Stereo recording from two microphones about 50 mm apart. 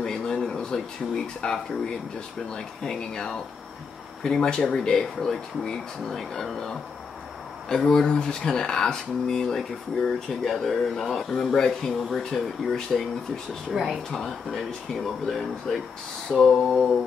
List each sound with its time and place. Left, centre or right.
0.0 s speech: centre
7.8 s speech: centre
15.2 s speech: centre
16.3 s mantra: centre